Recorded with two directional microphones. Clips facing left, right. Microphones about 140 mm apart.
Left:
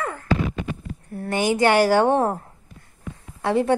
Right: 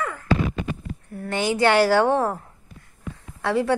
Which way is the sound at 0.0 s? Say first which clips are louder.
Even; 35° left (ahead or behind).